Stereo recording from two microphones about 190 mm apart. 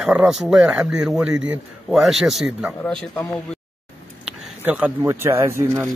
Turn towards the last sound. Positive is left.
turn(degrees=-15)  # may be behind; listen again after turning